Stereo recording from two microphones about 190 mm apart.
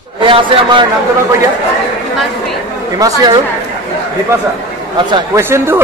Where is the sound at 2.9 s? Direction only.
20° right (ahead or behind).